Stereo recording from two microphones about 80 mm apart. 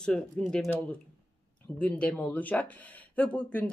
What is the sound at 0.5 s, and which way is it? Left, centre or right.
Speech, centre.